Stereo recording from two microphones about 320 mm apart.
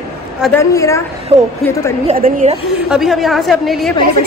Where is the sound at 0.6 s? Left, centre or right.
Centre.